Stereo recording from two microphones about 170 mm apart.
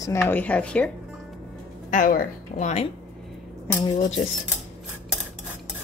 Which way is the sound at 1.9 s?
50° left (ahead or behind).